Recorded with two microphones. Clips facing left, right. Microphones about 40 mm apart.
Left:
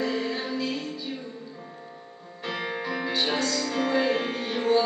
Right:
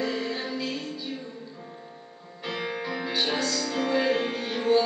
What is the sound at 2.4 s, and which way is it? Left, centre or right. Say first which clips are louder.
Music: left 1 dB; centre.